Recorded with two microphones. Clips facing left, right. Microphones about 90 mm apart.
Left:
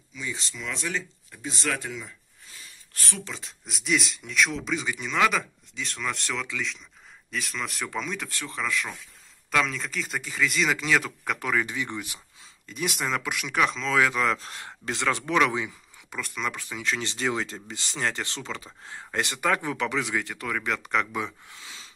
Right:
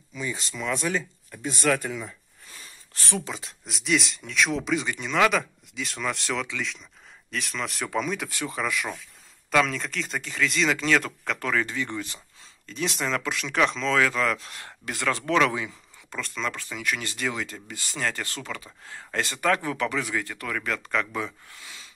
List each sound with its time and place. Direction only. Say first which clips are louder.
0.1 s speech: right 3 dB; 45° right (ahead or behind)
2.9 s speech: right 5 dB; 20° right (ahead or behind)
3.3 s speech: right 2 dB; centre (ahead or behind)
9.5 s speech: right 3 dB; centre (ahead or behind)
13.9 s speech: left 3 dB; 15° left (ahead or behind)